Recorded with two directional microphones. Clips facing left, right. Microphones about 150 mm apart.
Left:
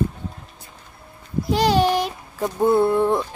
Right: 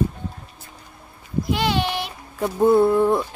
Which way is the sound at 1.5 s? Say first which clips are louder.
Left 5 dB; 40° left (ahead or behind).